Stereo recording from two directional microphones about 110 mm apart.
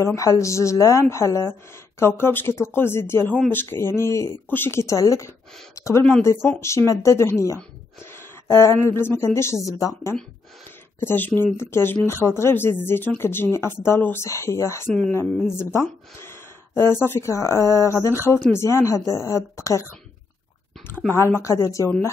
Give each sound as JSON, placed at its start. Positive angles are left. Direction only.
{"t": 0.0, "sound": "speech", "side_deg": 30}
{"t": 11.0, "sound": "speech", "side_deg": 20}
{"t": 21.1, "sound": "speech", "side_deg": 25}